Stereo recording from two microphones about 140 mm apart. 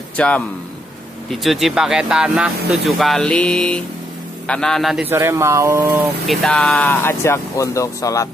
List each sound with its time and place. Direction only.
0.2 s speech: 10° left (ahead or behind)
5.0 s speech: 15° right (ahead or behind)
6.2 s speech: 5° left (ahead or behind); by 8.3 s 20° left (ahead or behind)